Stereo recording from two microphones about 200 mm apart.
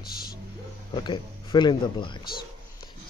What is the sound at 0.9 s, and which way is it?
Speech, 20° left (ahead or behind).